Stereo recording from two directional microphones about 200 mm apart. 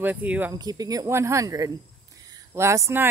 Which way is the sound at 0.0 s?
10° right (ahead or behind).